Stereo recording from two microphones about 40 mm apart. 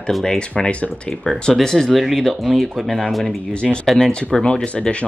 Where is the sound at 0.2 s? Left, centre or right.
Centre.